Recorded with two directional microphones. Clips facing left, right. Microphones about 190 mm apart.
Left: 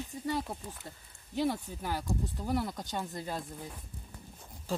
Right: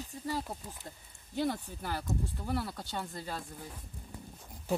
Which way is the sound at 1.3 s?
10° left (ahead or behind).